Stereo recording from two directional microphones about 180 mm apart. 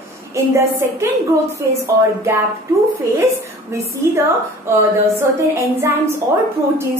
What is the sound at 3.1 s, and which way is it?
A woman's voice, 15° right (ahead or behind).